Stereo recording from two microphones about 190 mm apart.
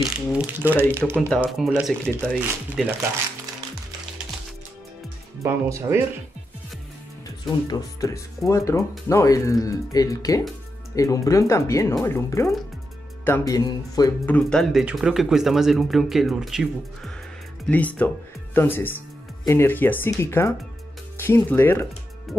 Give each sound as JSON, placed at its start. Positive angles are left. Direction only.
{"t": 0.0, "sound": "speech", "side_deg": -5}
{"t": 5.4, "sound": "speech", "side_deg": -15}
{"t": 7.4, "sound": "speech", "side_deg": 20}
{"t": 14.2, "sound": "speech", "side_deg": 5}